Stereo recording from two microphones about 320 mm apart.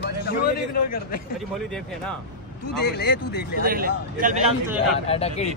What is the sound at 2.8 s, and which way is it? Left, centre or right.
Speech, left.